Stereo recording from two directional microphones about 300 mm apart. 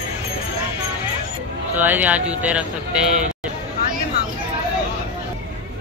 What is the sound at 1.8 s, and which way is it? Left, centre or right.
Speech, centre.